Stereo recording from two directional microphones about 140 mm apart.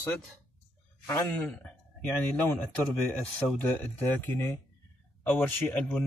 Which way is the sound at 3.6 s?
15° left (ahead or behind).